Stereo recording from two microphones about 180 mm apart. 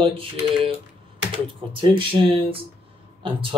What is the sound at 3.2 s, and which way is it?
Speech, 30° right (ahead or behind).